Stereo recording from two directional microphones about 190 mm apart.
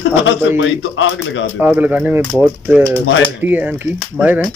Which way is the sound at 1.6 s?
10° right (ahead or behind).